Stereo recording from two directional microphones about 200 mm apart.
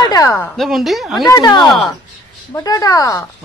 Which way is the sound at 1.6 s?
Centre (ahead or behind).